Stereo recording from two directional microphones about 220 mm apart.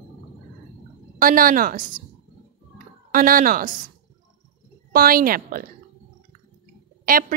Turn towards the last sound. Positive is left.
turn(degrees=-40)  # may be behind; listen again after turning